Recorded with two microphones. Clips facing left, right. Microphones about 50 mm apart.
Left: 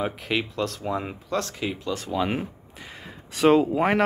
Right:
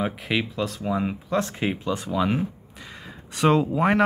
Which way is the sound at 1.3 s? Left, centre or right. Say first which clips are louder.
Right 2 dB; right.